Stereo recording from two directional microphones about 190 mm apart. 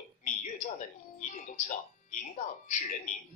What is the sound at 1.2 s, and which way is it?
Speech, 40° left (ahead or behind).